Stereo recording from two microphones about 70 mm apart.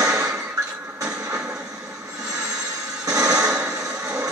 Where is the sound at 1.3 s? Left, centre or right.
Centre.